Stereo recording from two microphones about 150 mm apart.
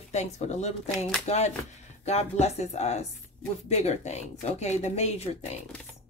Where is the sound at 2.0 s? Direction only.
45° left (ahead or behind).